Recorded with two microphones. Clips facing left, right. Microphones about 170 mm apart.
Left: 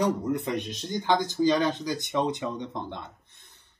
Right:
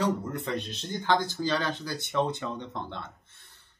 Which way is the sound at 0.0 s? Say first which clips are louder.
Left 3 dB; 15° left (ahead or behind).